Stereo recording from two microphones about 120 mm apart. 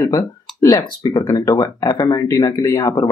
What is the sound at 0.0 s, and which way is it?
Speech, 25° left (ahead or behind).